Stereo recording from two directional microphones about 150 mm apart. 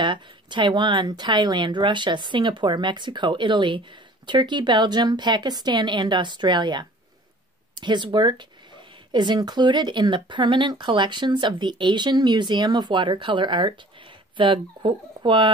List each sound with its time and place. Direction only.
0.0 s a woman's voice: 30° right (ahead or behind)